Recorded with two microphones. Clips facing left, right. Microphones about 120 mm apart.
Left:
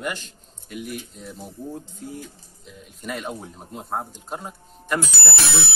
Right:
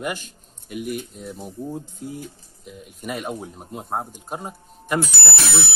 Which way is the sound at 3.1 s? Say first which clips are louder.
Right 2 dB; 10° right (ahead or behind).